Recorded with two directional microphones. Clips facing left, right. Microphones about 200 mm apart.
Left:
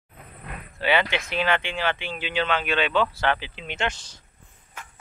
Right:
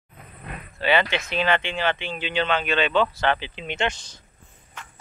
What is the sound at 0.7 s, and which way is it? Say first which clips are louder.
Speech: right 1 dB; 10° left (ahead or behind).